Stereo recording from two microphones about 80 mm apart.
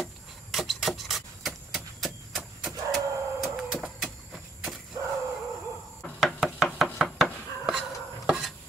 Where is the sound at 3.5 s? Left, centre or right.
Centre.